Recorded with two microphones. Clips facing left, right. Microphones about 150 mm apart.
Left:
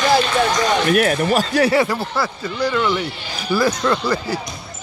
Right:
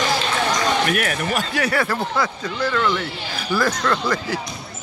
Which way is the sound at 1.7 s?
10° left (ahead or behind).